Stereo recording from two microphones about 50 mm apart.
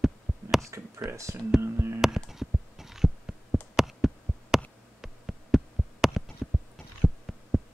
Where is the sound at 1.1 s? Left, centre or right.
Right.